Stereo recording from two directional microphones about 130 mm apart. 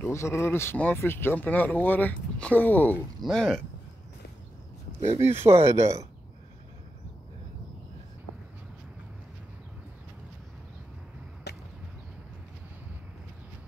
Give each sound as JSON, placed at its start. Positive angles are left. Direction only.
{"t": 0.0, "sound": "speech", "side_deg": 20}
{"t": 5.2, "sound": "speech", "side_deg": -20}